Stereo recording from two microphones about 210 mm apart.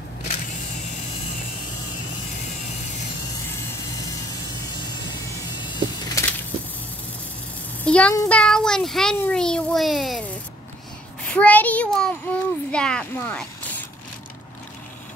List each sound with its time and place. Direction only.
3.5 s vehicle: 15° left (ahead or behind)
7.8 s child singing: 5° left (ahead or behind)
8.2 s a child's voice: 5° left (ahead or behind)
11.2 s a child's voice: 5° left (ahead or behind)